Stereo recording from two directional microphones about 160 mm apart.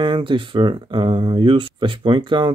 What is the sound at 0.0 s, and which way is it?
Speech, 30° right (ahead or behind).